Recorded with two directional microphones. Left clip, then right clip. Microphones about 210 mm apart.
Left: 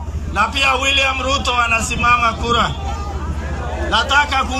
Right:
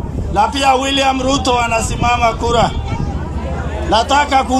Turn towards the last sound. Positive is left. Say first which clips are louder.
# right 3 dB
turn(degrees=-30)  # may be behind; listen again after turning